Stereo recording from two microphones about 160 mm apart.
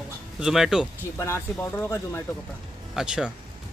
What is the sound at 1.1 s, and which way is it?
Speech, 20° left (ahead or behind).